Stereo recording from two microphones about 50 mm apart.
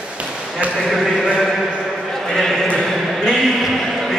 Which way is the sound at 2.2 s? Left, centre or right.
Centre.